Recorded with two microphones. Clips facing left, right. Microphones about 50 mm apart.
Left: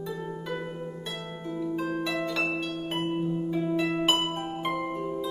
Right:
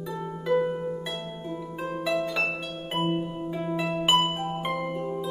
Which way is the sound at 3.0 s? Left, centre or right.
Right.